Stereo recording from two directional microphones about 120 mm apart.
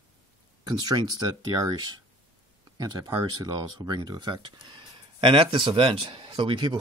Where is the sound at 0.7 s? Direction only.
35° right (ahead or behind).